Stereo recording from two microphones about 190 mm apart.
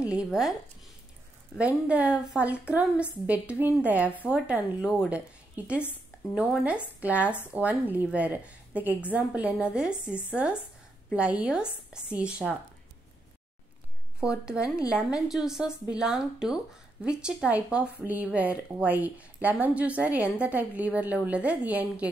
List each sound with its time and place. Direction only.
0.0 s a woman's voice: 5° right (ahead or behind)
1.6 s a woman's voice: 5° right (ahead or behind)
6.3 s a woman's voice: 5° right (ahead or behind)
14.2 s a woman's voice: 5° right (ahead or behind)